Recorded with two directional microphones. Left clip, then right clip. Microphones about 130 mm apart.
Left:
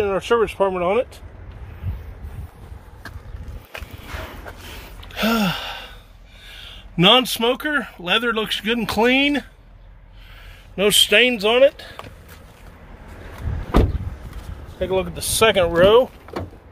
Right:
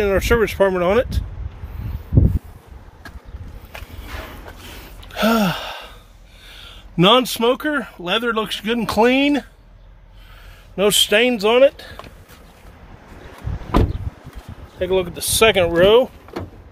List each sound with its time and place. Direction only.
0.0 s speech: 75° right (ahead or behind)
5.1 s gasp: 65° right (ahead or behind)
6.4 s speech: 45° right (ahead or behind)
10.8 s speech: 40° right (ahead or behind); by 12.0 s 60° right (ahead or behind)
14.8 s speech: 50° right (ahead or behind)